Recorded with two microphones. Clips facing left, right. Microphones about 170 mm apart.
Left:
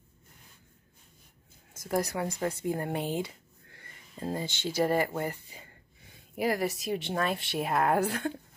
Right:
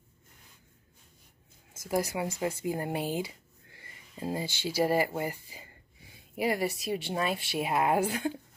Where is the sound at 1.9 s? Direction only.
5° right (ahead or behind).